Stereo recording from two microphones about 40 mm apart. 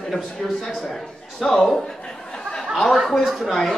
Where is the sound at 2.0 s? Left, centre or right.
Left.